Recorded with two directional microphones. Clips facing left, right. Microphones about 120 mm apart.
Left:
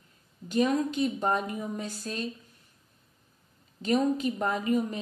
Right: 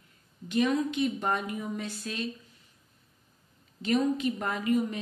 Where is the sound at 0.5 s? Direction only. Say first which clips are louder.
Left 1 dB; 40° left (ahead or behind).